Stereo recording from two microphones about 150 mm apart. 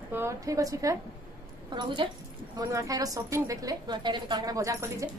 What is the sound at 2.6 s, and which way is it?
A woman's voice, 20° right (ahead or behind).